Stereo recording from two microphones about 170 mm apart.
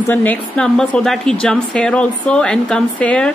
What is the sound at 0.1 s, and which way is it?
A woman's voice, 10° left (ahead or behind).